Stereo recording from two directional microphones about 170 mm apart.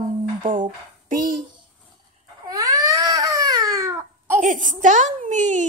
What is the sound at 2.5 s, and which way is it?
Baby cry, 20° right (ahead or behind).